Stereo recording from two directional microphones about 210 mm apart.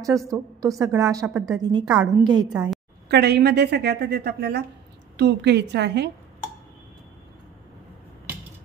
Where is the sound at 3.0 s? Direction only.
50° right (ahead or behind).